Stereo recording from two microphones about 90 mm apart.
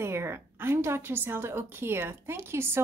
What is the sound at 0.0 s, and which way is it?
A woman's voice, 30° right (ahead or behind).